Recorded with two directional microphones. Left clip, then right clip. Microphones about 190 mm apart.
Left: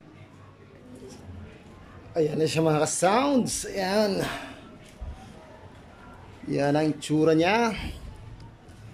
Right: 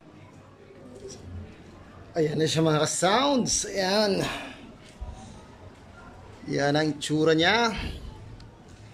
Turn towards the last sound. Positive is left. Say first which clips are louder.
# right 1 dB
turn(degrees=5)  # may be behind; listen again after turning